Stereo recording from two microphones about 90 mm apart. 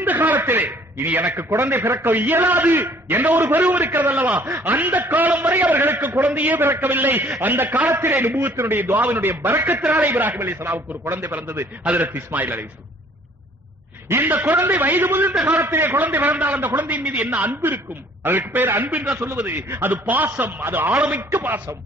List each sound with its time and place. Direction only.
0.0 s a man's voice: 20° right (ahead or behind)
14.0 s a man's voice: 25° right (ahead or behind)